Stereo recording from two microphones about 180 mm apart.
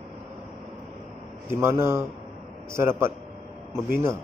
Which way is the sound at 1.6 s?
15° right (ahead or behind).